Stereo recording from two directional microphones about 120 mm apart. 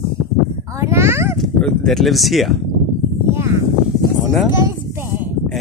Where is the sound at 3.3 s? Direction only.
25° right (ahead or behind).